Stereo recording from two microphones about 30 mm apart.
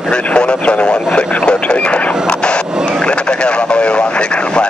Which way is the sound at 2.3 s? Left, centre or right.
Left.